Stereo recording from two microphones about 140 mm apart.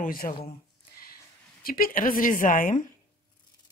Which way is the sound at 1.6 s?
90° left.